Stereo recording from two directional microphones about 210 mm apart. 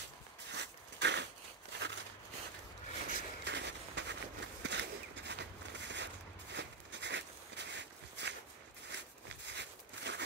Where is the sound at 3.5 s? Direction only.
55° right (ahead or behind).